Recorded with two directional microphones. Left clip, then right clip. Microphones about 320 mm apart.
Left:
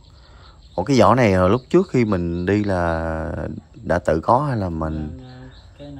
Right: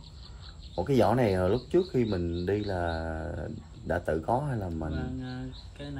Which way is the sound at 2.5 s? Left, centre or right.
Left.